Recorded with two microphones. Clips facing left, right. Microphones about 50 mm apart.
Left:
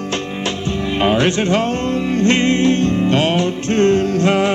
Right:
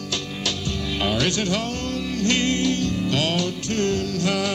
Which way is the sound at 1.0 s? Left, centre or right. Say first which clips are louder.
Left 8 dB; left.